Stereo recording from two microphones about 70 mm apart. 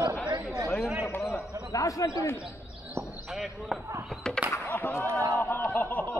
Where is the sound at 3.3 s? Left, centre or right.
Centre.